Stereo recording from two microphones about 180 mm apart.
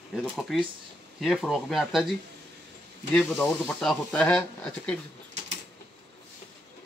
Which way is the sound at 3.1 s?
5° left (ahead or behind).